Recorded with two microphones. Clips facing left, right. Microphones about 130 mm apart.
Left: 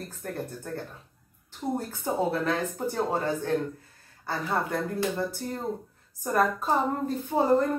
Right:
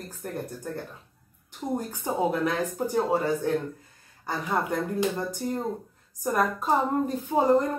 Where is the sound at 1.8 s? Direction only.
15° right (ahead or behind).